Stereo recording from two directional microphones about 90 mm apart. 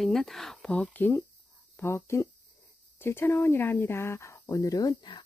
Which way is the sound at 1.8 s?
30° left (ahead or behind).